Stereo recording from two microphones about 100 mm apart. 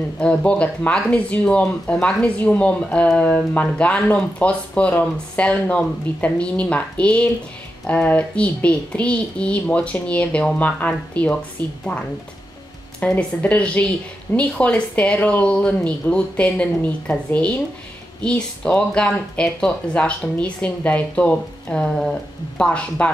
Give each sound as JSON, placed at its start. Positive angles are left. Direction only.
{"t": 0.2, "sound": "speech", "side_deg": 10}
{"t": 13.0, "sound": "speech", "side_deg": 15}